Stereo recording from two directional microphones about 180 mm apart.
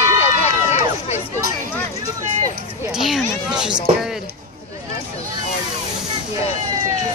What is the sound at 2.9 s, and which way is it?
Speech, centre (ahead or behind).